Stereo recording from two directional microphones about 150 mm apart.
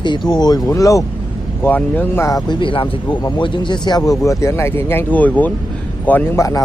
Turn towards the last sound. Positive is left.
turn(degrees=20)  # may be behind; listen again after turning